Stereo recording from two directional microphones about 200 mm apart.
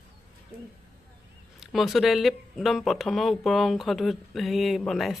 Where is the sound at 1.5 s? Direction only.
Centre (ahead or behind).